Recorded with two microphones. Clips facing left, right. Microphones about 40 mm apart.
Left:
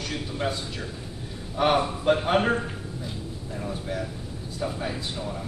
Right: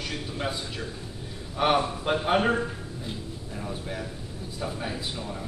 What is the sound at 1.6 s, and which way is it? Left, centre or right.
A man's voice, centre.